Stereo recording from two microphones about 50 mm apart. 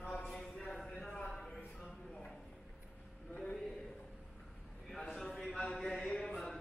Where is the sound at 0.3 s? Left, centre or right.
Centre.